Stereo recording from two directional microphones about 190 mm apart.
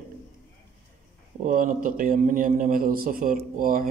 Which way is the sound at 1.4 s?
45° right (ahead or behind).